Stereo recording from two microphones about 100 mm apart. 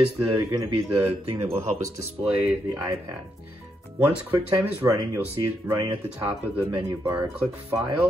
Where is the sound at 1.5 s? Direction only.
90° right.